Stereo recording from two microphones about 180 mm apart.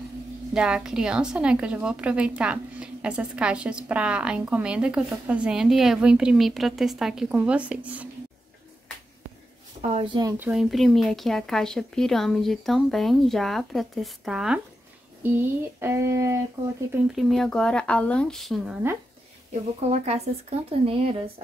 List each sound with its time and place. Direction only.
0.6 s a woman's voice: 5° right (ahead or behind)
9.8 s speech: 40° right (ahead or behind)
10.0 s speech: 25° right (ahead or behind)
10.4 s a woman's voice: 5° right (ahead or behind)
15.2 s a sound: 10° right (ahead or behind)
16.9 s a woman's voice: centre (ahead or behind)
19.9 s speech: 35° right (ahead or behind)